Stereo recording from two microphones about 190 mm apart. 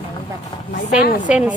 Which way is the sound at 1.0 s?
50° left (ahead or behind).